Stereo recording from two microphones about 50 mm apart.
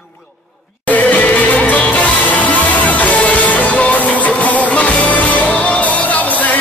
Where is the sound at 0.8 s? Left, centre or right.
Left.